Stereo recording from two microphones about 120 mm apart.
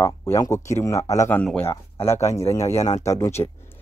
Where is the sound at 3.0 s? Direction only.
25° left (ahead or behind).